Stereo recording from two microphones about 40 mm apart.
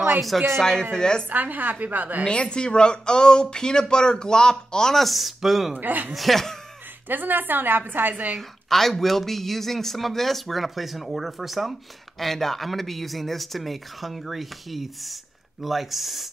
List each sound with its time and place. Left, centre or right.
0.6 s speech: centre
1.3 s a woman's voice: right
2.2 s speech: left
4.9 s speech: centre
5.8 s a woman's voice: right
6.1 s speech: centre
7.1 s a woman's voice: right
8.1 s a woman's voice: right
8.4 s speech: centre